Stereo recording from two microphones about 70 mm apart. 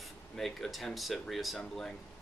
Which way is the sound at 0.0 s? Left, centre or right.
Centre.